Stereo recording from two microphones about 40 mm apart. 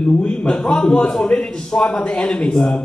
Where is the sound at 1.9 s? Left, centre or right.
Left.